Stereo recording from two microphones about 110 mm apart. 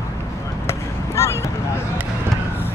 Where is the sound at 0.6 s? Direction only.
25° left (ahead or behind).